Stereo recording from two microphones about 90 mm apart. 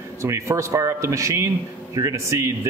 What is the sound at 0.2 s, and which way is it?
A man's voice, 35° right (ahead or behind).